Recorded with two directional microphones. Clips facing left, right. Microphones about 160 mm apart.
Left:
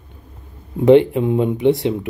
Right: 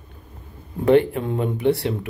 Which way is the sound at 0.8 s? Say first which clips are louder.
Left 5 dB; 20° left (ahead or behind).